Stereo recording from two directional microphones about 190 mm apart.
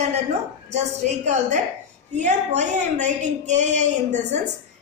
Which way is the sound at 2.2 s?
40° right (ahead or behind).